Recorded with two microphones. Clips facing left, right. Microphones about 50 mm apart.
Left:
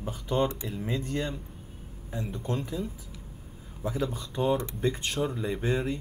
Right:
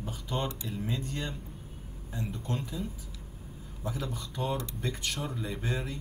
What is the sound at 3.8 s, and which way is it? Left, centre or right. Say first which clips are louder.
Speech: left 5 dB; left.